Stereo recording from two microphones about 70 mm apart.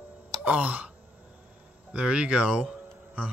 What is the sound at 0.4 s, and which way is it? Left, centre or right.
Music, centre.